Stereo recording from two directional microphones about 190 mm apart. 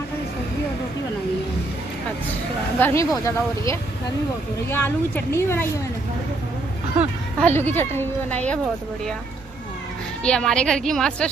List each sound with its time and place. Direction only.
2.8 s a woman's voice: 15° left (ahead or behind)
7.3 s a woman's voice: 10° left (ahead or behind)
10.2 s a woman's voice: 5° left (ahead or behind)